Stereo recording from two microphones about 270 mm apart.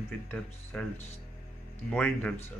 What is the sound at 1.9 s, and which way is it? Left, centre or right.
Speech, centre.